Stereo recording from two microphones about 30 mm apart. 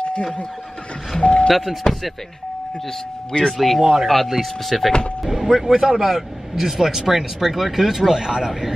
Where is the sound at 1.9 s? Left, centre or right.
Left.